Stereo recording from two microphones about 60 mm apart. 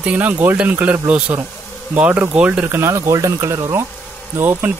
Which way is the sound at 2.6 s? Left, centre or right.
Right.